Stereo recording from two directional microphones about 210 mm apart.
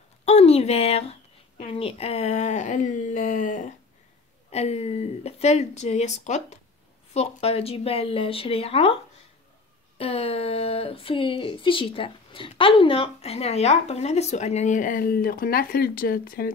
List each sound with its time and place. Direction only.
0.2 s a sound: 30° left (ahead or behind)
1.6 s speech: 25° left (ahead or behind)
9.9 s speech: 30° left (ahead or behind); by 16.5 s 45° left (ahead or behind)